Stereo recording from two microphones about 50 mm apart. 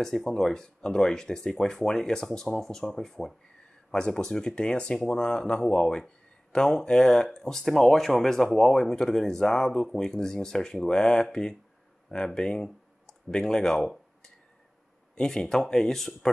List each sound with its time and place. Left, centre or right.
0.0 s speech: centre
12.6 s a sound: centre
15.1 s speech: centre